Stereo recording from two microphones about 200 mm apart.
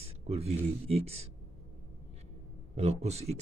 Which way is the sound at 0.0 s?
30° right (ahead or behind).